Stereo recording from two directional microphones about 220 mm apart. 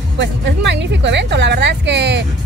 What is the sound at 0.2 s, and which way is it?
Speech, 50° right (ahead or behind).